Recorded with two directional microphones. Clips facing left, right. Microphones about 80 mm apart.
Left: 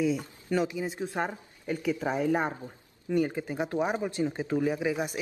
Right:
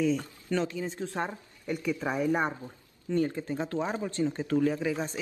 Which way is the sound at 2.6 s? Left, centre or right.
Centre.